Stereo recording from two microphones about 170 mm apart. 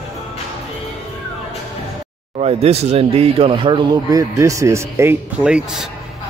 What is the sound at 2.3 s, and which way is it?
Speech, 35° right (ahead or behind).